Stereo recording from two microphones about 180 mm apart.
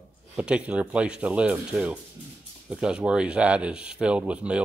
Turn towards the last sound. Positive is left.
turn(degrees=-5)  # may be behind; listen again after turning